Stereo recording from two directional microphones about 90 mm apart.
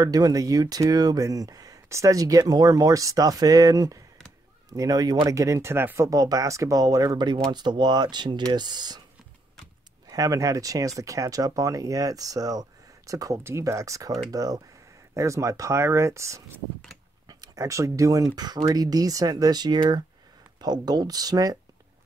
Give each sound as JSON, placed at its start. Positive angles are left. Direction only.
{"t": 0.0, "sound": "speech", "side_deg": -45}
{"t": 6.0, "sound": "speech", "side_deg": -40}
{"t": 10.1, "sound": "speech", "side_deg": -40}